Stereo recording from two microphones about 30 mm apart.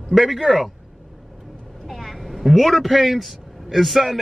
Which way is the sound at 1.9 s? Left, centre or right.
Centre.